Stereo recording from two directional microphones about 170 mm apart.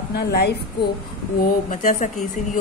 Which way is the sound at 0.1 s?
70° left (ahead or behind).